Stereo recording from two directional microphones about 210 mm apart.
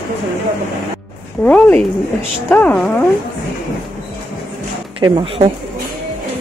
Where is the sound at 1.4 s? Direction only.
5° left (ahead or behind).